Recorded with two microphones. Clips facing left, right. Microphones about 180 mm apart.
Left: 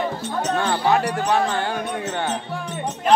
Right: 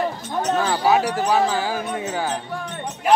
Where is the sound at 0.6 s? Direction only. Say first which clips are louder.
Right 1 dB; 5° right (ahead or behind).